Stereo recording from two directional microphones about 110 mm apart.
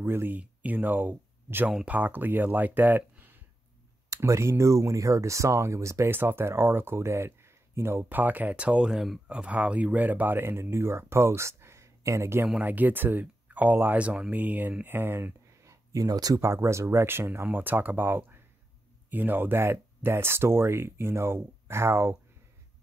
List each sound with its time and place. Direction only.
0.0 s speech: 20° right (ahead or behind)
12.4 s speech: 10° right (ahead or behind); by 16.3 s 35° right (ahead or behind)
16.3 s speech: 25° right (ahead or behind)